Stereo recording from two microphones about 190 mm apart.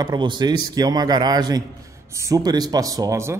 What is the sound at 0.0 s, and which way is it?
A man's voice, 25° right (ahead or behind).